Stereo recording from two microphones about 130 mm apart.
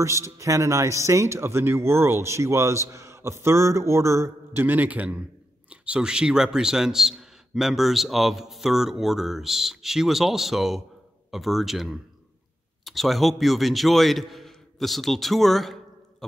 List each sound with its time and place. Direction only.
0.0 s a man's voice: 25° right (ahead or behind); by 16.3 s centre (ahead or behind)